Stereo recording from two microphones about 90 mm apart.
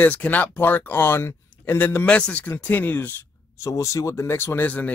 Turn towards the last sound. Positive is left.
turn(degrees=20)  # may be behind; listen again after turning